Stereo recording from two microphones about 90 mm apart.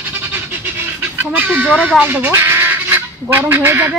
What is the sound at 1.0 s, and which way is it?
Speech, 20° right (ahead or behind).